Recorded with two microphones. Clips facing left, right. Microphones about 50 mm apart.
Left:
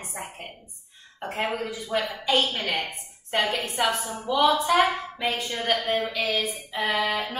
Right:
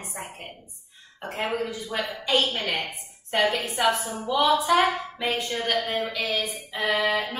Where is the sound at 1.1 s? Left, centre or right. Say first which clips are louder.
Even; centre.